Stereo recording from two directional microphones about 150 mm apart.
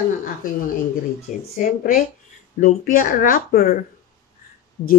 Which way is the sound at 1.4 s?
65° left (ahead or behind).